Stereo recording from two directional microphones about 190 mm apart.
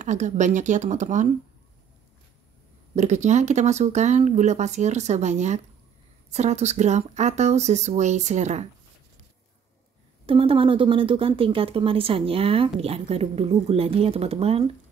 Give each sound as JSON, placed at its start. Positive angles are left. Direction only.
{"t": 0.0, "sound": "speech", "side_deg": -40}
{"t": 3.0, "sound": "speech", "side_deg": -35}
{"t": 10.2, "sound": "speech", "side_deg": -30}